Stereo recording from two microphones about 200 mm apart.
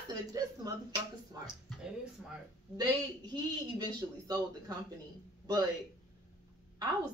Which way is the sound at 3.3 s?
20° right (ahead or behind).